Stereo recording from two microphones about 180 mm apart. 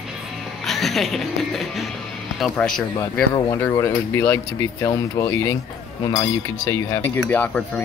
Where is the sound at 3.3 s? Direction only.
15° left (ahead or behind).